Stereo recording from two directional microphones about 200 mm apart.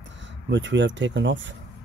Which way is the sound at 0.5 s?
65° right (ahead or behind).